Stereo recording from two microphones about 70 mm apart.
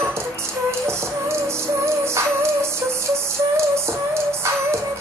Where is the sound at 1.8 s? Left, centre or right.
Right.